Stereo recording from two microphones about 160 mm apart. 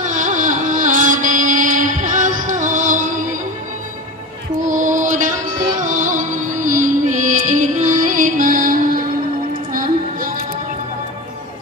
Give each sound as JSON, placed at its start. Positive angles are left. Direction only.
{"t": 0.0, "sound": "carnatic music", "side_deg": -55}
{"t": 4.6, "sound": "music", "side_deg": -55}